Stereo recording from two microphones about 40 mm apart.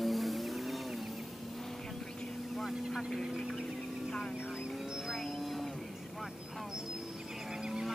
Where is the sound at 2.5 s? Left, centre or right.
Centre.